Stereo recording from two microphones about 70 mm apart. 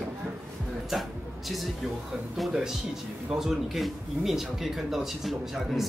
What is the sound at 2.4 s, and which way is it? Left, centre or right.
Speech, centre.